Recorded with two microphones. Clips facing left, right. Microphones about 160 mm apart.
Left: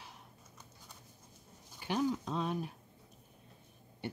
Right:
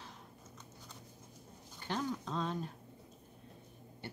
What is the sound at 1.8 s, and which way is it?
Speech, 10° left (ahead or behind).